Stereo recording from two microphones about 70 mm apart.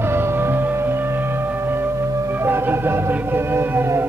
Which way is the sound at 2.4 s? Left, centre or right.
Right.